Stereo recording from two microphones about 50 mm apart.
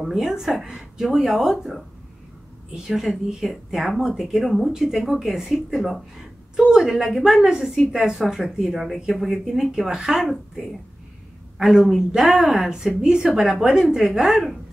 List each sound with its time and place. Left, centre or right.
0.0 s speech: centre